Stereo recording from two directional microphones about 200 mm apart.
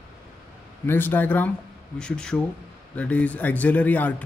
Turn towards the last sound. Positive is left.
turn(degrees=10)  # may be behind; listen again after turning